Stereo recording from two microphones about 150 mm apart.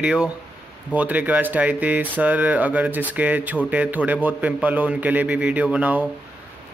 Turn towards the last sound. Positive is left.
turn(degrees=-10)  # may be behind; listen again after turning